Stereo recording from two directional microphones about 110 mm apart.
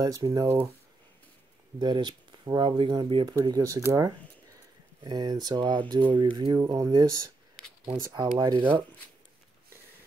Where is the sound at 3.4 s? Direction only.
35° right (ahead or behind).